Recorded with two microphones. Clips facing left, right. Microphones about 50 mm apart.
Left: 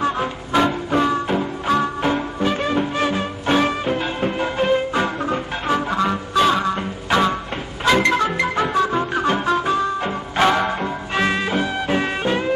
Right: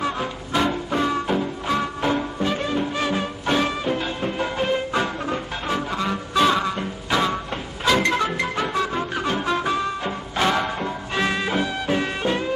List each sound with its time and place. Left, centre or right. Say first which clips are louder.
0.0 s music: left 4 dB; left
3.1 s music: left 3 dB; centre; by 6.1 s left
6.3 s music: left 1 dB; centre
9.5 s music: left 2 dB; centre
10.0 s music: left 5 dB; left